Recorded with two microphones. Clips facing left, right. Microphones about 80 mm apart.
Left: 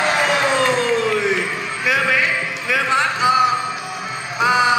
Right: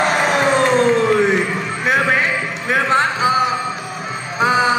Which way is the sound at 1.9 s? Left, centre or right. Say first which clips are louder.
Right 2 dB; right.